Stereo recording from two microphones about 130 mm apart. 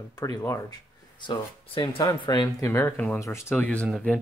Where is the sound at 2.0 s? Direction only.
30° left (ahead or behind).